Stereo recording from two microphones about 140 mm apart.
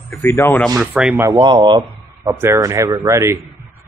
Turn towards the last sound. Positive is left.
turn(degrees=-15)  # may be behind; listen again after turning